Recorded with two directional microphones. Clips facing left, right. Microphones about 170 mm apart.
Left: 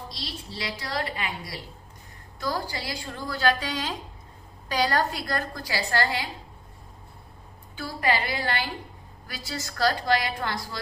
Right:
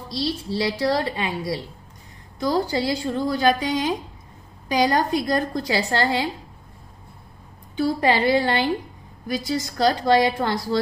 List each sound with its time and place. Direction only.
0.1 s a woman's voice: 30° right (ahead or behind)
7.7 s a woman's voice: 25° right (ahead or behind)
9.3 s a woman's voice: 15° right (ahead or behind)